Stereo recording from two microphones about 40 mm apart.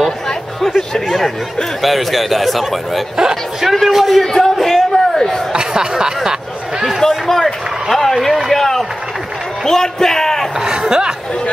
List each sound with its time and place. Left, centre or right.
0.6 s a man's voice: centre
4.2 s a sound: centre
5.5 s speech: centre
7.0 s run: centre
9.7 s a man's voice: centre
10.6 s speech: centre